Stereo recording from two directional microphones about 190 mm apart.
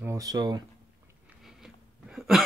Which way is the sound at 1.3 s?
Centre (ahead or behind).